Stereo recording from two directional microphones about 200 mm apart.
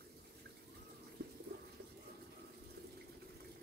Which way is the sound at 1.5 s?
55° right (ahead or behind).